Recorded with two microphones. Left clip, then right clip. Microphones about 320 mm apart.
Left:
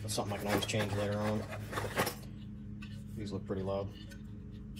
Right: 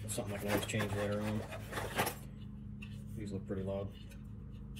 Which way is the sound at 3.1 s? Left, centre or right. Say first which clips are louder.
Left 3 dB; left.